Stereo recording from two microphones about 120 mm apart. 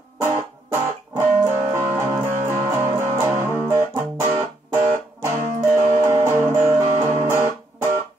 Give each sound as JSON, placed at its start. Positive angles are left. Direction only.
{"t": 1.1, "sound": "music", "side_deg": -20}